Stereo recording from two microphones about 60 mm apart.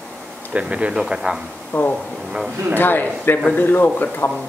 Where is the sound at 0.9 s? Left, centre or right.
Centre.